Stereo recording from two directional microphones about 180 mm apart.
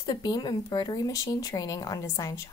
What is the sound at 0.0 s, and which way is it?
A woman's voice, 20° left (ahead or behind).